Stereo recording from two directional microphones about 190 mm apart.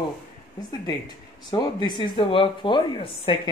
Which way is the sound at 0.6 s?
20° left (ahead or behind).